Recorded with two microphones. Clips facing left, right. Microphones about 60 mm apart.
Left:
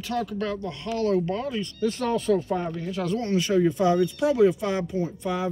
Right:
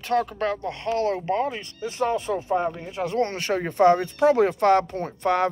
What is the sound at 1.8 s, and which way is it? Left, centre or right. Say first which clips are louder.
Speech: right 1 dB; centre.